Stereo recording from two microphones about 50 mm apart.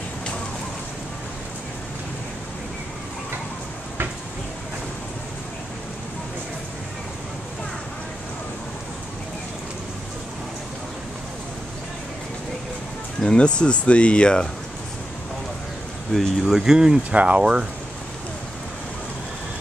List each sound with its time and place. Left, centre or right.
13.2 s speech: centre
16.1 s speech: centre
16.5 s speech: centre
17.1 s speech: right
17.4 s speech: centre